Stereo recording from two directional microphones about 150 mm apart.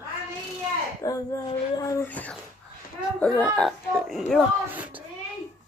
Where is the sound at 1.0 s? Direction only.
25° left (ahead or behind).